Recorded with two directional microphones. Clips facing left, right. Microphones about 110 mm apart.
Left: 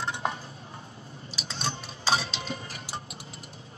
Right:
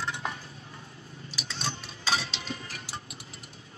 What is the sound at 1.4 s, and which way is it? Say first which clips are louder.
Cutlery: left 2 dB; 35° left (ahead or behind).